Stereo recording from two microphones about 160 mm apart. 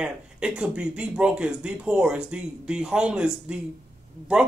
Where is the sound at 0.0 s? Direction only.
5° right (ahead or behind).